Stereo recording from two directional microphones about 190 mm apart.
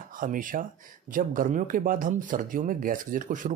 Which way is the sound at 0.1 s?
45° right (ahead or behind).